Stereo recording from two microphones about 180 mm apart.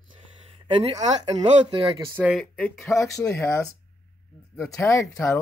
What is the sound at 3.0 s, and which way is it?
Speech, 15° left (ahead or behind).